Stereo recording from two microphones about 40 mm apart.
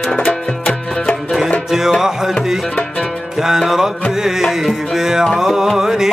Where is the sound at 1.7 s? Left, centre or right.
Centre.